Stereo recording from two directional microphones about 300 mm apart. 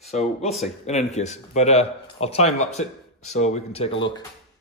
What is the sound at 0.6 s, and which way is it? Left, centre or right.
Speech, left.